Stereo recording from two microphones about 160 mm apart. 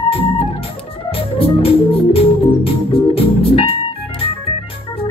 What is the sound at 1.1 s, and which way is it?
Organ, 35° left (ahead or behind).